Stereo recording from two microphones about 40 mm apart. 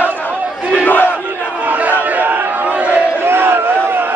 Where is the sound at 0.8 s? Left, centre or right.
Left.